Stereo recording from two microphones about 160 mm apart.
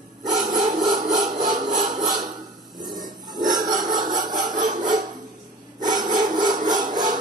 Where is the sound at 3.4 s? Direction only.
25° right (ahead or behind).